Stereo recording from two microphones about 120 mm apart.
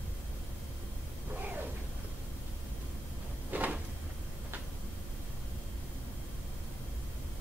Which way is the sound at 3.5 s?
15° right (ahead or behind).